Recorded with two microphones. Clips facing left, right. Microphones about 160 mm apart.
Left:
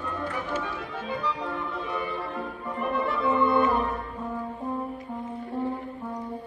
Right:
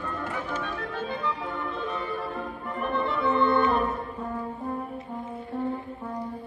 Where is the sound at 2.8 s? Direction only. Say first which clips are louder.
Even; centre (ahead or behind).